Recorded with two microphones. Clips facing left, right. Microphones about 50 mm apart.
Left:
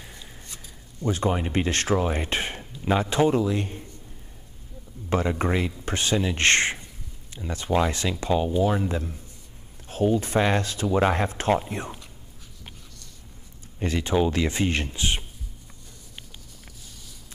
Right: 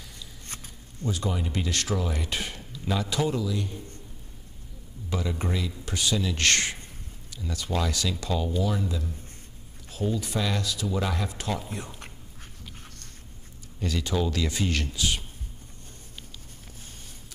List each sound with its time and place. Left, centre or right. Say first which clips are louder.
1.0 s speech: left 5 dB; left
5.1 s speech: left 7 dB; left
13.7 s speech: left 5 dB; left